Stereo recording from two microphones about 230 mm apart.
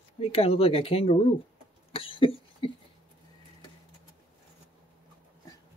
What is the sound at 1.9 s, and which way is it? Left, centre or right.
Cough, left.